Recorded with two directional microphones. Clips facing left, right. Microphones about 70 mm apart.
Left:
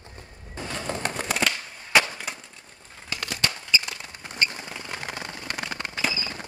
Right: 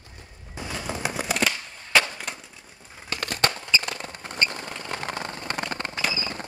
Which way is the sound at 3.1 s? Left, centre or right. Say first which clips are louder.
Right 4 dB; right.